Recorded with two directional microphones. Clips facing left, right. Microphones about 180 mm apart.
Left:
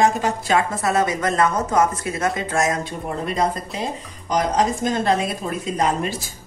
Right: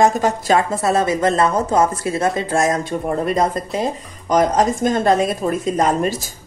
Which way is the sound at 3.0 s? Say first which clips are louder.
Right 4 dB; 50° right (ahead or behind).